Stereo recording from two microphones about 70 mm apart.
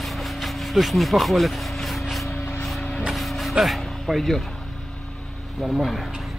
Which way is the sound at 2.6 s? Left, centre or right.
Centre.